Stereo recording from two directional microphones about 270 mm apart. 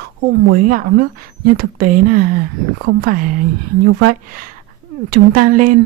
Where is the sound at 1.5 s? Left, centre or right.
Right.